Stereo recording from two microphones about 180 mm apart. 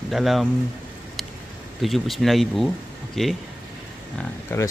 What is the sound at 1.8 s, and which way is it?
Speech, centre (ahead or behind).